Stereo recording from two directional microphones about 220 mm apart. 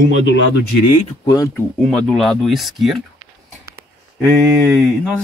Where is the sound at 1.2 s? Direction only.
15° left (ahead or behind).